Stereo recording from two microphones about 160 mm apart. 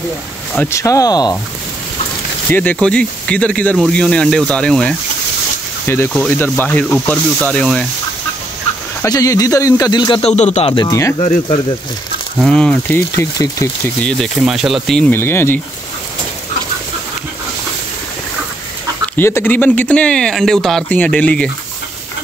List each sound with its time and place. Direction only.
0.6 s speech: 15° left (ahead or behind)
2.5 s speech: 10° left (ahead or behind)
9.0 s speech: 20° left (ahead or behind)
10.2 s speech: 45° left (ahead or behind); by 11.1 s 20° left (ahead or behind)
12.4 s speech: 5° left (ahead or behind)
14.0 s speech: centre (ahead or behind)
19.1 s speech: 15° left (ahead or behind)